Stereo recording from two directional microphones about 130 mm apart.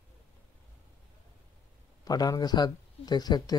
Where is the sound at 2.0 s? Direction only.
30° left (ahead or behind).